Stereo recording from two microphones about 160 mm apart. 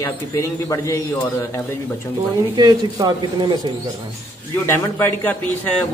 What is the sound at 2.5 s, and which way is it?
Speech, 25° right (ahead or behind).